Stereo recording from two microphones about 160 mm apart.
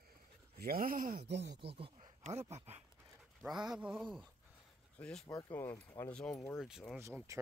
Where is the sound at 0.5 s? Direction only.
65° right (ahead or behind); by 1.6 s 90° right.